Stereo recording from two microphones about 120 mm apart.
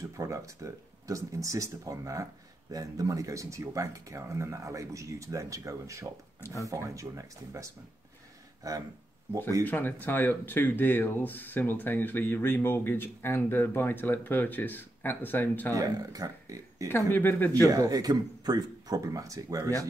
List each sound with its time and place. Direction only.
0.0 s speech: 25° right (ahead or behind)
6.4 s speech: 25° left (ahead or behind)
6.7 s speech: 25° right (ahead or behind)
9.7 s speech: 15° left (ahead or behind)
15.7 s speech: 30° right (ahead or behind)
16.9 s speech: 15° left (ahead or behind)
17.6 s speech: 30° right (ahead or behind)